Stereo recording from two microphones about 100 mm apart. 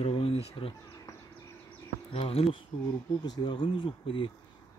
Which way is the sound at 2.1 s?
90° left.